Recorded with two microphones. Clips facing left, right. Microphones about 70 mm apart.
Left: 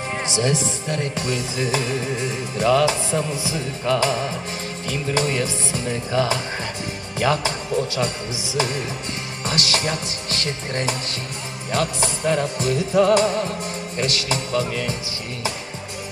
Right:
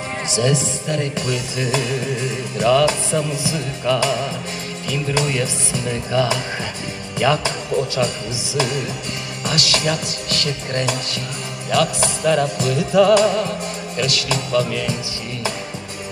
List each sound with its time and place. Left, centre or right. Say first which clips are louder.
0.4 s music: right 4 dB; left
8.5 s music: right 2 dB; left
9.4 s speech: right 2 dB; left
12.0 s music: right 4 dB; right
12.5 s music: right 1 dB; left
12.9 s music: right 3 dB; right
13.2 s music: right 3 dB; left